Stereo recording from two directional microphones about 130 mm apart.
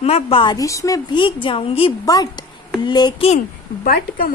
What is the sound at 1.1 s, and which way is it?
Speech, 40° left (ahead or behind).